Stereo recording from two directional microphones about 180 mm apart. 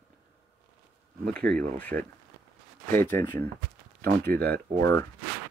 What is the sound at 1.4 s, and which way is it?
Speech, 5° left (ahead or behind).